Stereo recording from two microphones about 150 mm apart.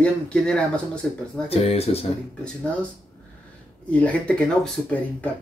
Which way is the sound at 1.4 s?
40° left (ahead or behind).